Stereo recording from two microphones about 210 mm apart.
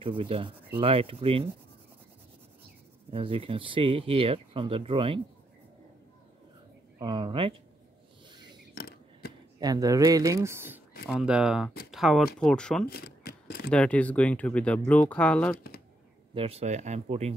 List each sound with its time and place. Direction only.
0.0 s speech: 25° right (ahead or behind)
3.1 s speech: 25° right (ahead or behind)
7.0 s speech: 20° right (ahead or behind)
8.7 s a sound: 45° left (ahead or behind)
9.6 s speech: 15° right (ahead or behind); by 12.8 s 5° left (ahead or behind)
12.8 s a sound: 45° left (ahead or behind)
13.7 s speech: 5° left (ahead or behind)
16.3 s speech: 30° right (ahead or behind)